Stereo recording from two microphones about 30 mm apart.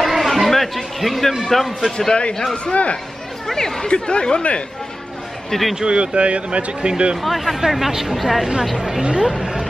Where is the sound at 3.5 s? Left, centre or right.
Centre.